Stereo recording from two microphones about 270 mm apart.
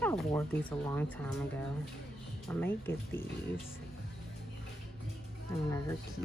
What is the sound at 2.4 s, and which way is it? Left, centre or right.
Speech, centre.